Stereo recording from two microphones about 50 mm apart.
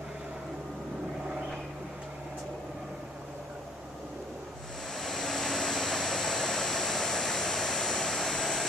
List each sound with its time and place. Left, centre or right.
4.9 s vehicle: centre